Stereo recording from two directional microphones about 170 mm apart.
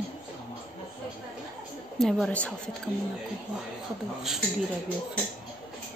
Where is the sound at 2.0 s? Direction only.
Centre (ahead or behind).